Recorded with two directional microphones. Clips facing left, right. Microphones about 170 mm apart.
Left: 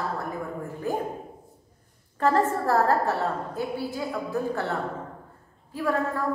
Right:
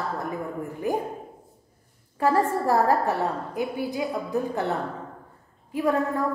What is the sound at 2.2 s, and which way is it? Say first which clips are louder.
A woman's voice: right 1 dB; 10° right (ahead or behind).